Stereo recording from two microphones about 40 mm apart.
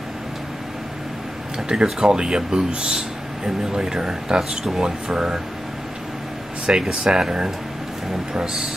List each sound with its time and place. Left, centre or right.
1.7 s speech: right
6.6 s speech: centre